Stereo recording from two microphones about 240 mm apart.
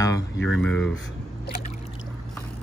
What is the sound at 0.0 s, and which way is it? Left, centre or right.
Speech, centre.